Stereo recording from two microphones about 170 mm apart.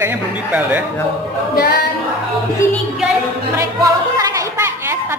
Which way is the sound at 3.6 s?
20° right (ahead or behind).